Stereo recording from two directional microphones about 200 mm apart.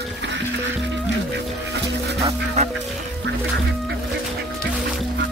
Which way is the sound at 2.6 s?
30° right (ahead or behind).